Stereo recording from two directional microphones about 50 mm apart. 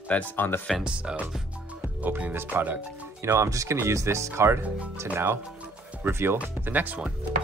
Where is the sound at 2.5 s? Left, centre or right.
Right.